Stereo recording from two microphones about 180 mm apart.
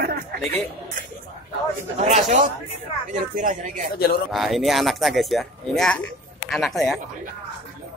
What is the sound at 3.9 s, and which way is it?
Speech, 55° left (ahead or behind).